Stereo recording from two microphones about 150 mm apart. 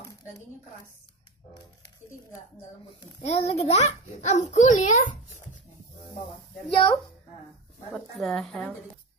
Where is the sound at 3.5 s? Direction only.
50° left (ahead or behind).